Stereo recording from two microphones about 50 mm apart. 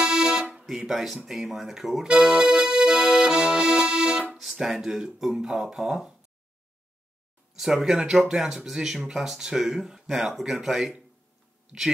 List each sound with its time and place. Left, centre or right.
0.0 s music: centre
0.7 s speech: centre
2.0 s music: centre
4.4 s speech: centre
7.5 s speech: centre